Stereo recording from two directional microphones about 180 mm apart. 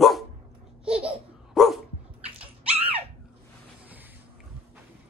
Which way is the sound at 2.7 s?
30° right (ahead or behind).